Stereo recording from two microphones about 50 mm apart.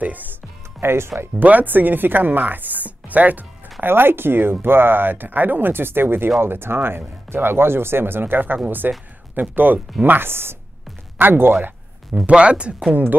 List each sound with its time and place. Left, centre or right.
0.0 s music: right
0.7 s speech: right
1.4 s speech: right
3.8 s speech: right
12.3 s speech: right